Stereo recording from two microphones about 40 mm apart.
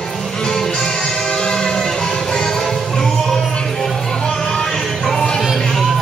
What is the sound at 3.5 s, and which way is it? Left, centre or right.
Music, centre.